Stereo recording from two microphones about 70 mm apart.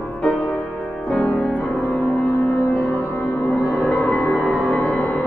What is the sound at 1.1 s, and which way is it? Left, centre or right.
Music, centre.